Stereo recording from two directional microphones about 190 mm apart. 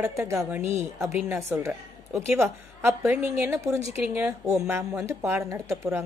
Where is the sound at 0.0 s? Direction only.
15° right (ahead or behind).